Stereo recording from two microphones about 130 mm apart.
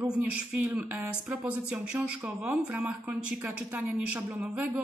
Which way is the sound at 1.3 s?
10° right (ahead or behind).